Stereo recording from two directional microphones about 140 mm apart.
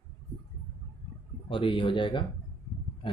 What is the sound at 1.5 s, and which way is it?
Speech, 35° left (ahead or behind).